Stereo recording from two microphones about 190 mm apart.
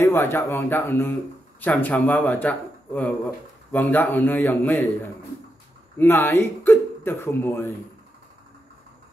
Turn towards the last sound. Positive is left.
turn(degrees=10)  # may be behind; listen again after turning